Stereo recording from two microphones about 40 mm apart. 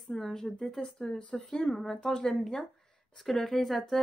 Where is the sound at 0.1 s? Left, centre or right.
Centre.